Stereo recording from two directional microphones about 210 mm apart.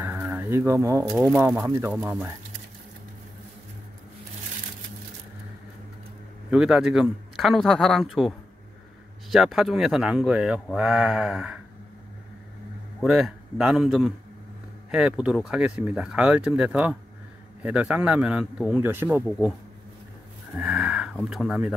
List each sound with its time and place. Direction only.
0.0 s a sound: 10° right (ahead or behind)
1.3 s speech: 5° right (ahead or behind)
6.5 s speech: 5° right (ahead or behind)
13.0 s speech: 5° right (ahead or behind)
20.5 s speech: 5° right (ahead or behind)